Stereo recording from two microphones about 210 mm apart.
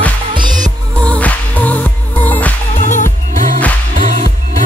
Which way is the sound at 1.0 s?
5° left (ahead or behind).